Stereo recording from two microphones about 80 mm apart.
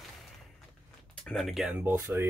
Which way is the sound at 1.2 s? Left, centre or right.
Centre.